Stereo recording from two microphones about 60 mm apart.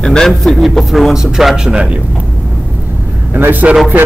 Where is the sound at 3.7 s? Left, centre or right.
Right.